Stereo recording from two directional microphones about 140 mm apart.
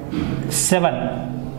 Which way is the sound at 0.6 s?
5° right (ahead or behind).